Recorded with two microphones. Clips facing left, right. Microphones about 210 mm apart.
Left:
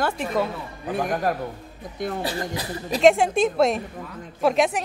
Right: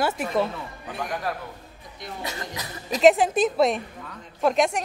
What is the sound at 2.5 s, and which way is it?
Speech, 30° left (ahead or behind).